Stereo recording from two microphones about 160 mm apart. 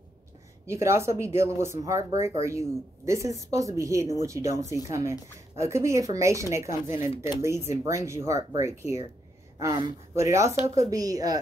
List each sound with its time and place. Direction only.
0.7 s speech: 15° right (ahead or behind)
10.1 s speech: 20° right (ahead or behind)